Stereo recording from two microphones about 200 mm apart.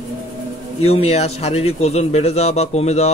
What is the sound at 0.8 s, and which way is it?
Speech, 30° left (ahead or behind).